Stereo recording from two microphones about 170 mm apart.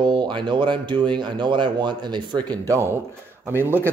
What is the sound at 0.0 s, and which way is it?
Speech, 30° right (ahead or behind).